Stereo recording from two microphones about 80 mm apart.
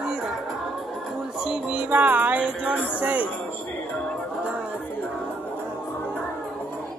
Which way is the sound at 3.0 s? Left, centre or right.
Centre.